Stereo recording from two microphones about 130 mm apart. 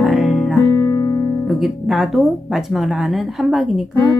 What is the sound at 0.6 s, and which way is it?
Music, 30° left (ahead or behind).